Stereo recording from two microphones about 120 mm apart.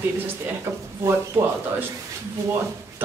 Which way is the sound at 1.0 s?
20° right (ahead or behind).